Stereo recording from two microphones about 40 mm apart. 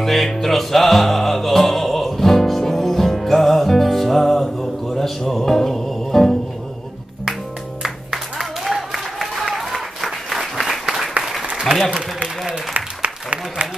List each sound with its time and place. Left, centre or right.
0.0 s music: centre
7.8 s music: centre
11.7 s applause: centre
12.2 s applause: right